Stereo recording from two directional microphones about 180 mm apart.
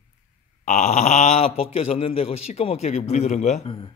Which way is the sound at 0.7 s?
40° left (ahead or behind).